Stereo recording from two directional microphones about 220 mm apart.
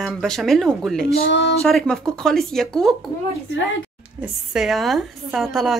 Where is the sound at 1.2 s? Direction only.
55° left (ahead or behind).